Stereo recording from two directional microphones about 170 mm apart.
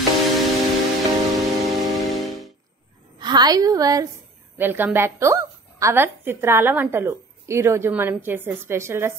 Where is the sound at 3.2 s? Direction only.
25° right (ahead or behind).